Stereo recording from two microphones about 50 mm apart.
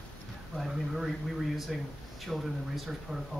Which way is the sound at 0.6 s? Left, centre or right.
Centre.